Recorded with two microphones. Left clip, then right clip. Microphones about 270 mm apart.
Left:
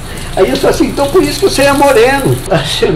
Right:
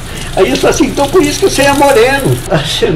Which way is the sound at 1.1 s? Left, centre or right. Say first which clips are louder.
Right 1 dB; right.